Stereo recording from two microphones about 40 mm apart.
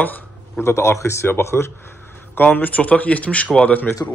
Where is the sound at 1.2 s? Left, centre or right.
Left.